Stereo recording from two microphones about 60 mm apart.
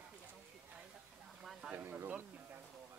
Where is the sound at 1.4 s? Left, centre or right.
Centre.